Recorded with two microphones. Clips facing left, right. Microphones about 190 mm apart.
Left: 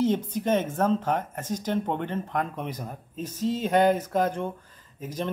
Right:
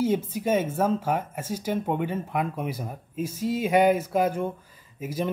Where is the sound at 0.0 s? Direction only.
10° right (ahead or behind).